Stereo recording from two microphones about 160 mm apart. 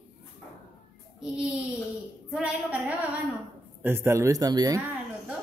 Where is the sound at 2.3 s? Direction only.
10° right (ahead or behind).